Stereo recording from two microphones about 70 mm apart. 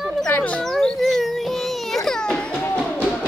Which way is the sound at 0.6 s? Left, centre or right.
Centre.